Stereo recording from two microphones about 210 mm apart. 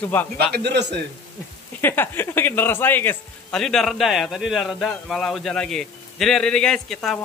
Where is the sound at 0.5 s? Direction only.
55° right (ahead or behind).